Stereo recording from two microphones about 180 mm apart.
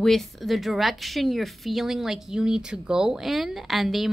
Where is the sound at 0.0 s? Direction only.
Centre (ahead or behind).